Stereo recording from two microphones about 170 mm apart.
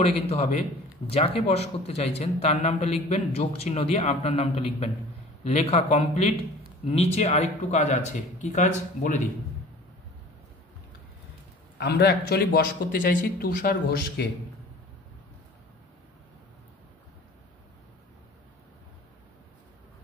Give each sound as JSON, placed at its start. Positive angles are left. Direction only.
{"t": 0.0, "sound": "a man's voice", "side_deg": 40}
{"t": 11.8, "sound": "a man's voice", "side_deg": 75}